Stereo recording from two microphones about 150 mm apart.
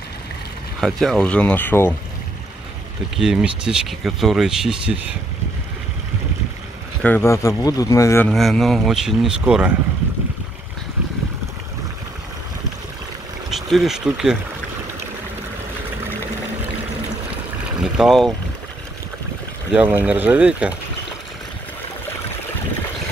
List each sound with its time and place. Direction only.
0.7 s speech: centre (ahead or behind)
3.2 s speech: 5° right (ahead or behind)
7.0 s speech: 10° left (ahead or behind)
8.3 s speech: centre (ahead or behind)
13.5 s speech: centre (ahead or behind)
17.9 s speech: centre (ahead or behind)
19.7 s speech: 10° right (ahead or behind)